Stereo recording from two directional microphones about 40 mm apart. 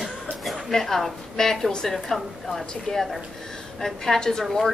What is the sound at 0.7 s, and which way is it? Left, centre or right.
A woman's voice, centre.